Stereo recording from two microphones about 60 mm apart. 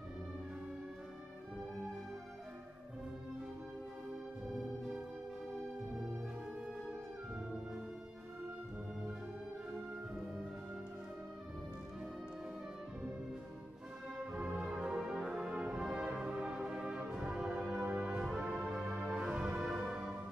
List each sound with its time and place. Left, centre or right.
4.6 s music: centre
14.3 s music: centre
17.7 s music: right
18.0 s music: centre